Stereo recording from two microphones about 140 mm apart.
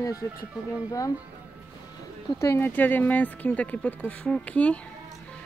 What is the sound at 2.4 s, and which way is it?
Speech, 15° left (ahead or behind).